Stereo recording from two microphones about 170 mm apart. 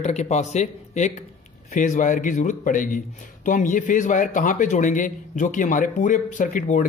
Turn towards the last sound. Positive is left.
turn(degrees=50)  # may be behind; listen again after turning